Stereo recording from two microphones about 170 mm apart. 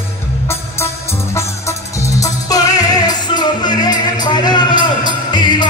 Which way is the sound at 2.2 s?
20° left (ahead or behind).